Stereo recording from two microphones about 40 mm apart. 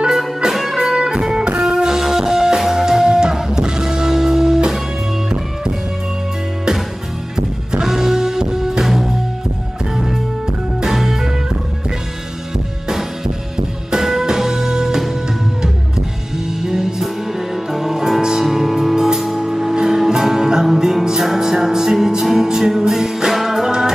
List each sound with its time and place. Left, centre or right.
0.4 s music: centre
0.9 s music: centre
7.3 s music: centre
10.9 s music: centre
14.2 s music: centre
16.4 s music: centre